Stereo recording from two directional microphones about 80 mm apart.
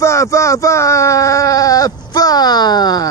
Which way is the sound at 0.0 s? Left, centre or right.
Left.